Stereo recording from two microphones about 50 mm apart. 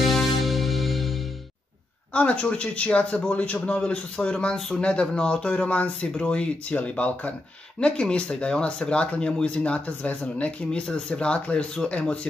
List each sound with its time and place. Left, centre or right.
0.0 s music: centre
2.1 s speech: left
4.6 s a man's voice: centre